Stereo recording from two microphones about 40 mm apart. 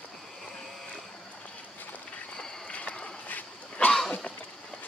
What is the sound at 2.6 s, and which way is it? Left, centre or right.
Walk, left.